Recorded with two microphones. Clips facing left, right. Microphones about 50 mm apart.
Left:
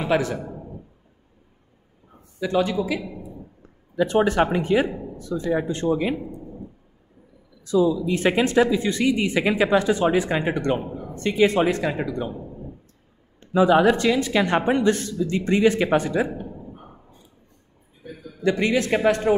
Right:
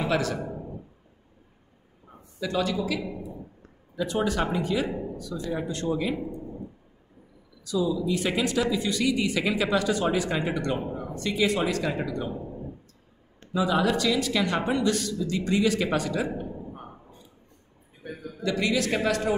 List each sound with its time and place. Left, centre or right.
0.0 s a man's voice: left
2.4 s speech: left
4.0 s speech: left
7.6 s speech: left
11.8 s speech: left
13.5 s speech: left
18.4 s speech: left